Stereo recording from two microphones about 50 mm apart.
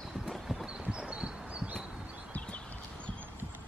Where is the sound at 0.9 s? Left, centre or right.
Right.